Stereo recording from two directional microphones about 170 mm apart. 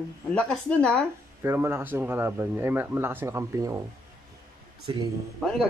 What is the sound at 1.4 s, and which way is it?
Speech, 15° right (ahead or behind).